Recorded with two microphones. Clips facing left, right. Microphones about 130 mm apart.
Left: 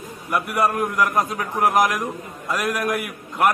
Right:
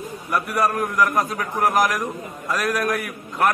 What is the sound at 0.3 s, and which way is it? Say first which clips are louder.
A man's voice: left 1 dB; 20° left (ahead or behind).